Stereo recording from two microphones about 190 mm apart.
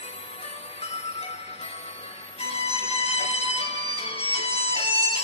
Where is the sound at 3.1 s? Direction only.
35° left (ahead or behind).